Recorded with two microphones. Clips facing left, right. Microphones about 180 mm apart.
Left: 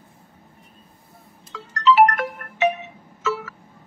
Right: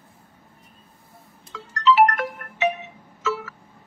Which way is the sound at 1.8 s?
50° left (ahead or behind).